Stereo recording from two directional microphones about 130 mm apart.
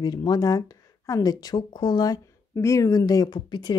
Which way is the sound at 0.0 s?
30° left (ahead or behind).